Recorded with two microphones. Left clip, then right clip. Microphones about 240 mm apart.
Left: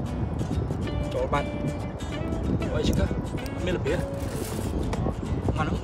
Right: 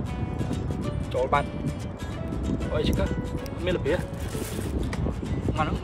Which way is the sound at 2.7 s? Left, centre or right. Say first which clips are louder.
Right 2 dB; centre.